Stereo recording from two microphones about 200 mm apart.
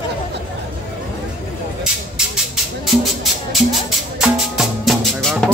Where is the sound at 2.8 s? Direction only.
Centre (ahead or behind).